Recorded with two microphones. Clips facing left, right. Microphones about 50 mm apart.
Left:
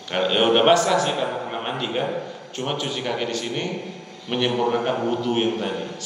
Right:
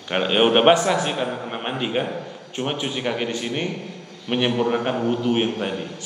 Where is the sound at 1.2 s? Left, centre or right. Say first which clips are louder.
Left 1 dB; centre.